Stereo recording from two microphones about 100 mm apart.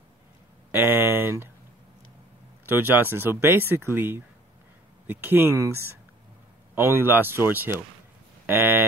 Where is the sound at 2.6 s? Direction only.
20° right (ahead or behind).